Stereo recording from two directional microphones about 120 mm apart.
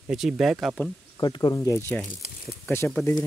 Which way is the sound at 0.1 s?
5° right (ahead or behind).